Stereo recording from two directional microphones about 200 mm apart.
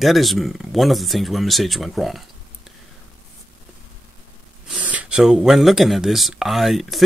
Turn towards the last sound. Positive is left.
turn(degrees=0)  # may be behind; listen again after turning